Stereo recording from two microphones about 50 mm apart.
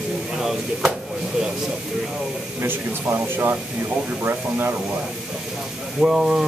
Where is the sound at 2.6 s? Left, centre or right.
Right.